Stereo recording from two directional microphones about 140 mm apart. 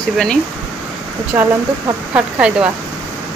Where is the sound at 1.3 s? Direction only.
15° right (ahead or behind).